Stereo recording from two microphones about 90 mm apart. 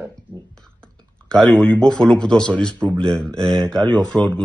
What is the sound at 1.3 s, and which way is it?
Speech, 10° left (ahead or behind).